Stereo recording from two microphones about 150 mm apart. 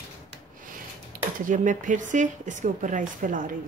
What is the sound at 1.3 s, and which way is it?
Speech, 60° right (ahead or behind).